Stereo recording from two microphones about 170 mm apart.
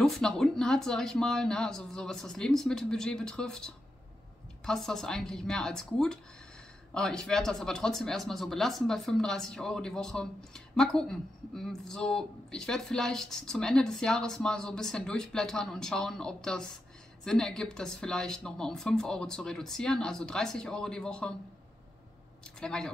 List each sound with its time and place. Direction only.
0.0 s speech: centre (ahead or behind)
22.6 s speech: 5° left (ahead or behind)